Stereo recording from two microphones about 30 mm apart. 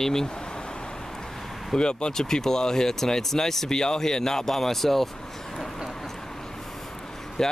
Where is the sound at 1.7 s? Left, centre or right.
Left.